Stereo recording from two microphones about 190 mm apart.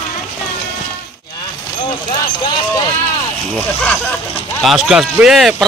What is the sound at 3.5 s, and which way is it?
Speech, 5° left (ahead or behind).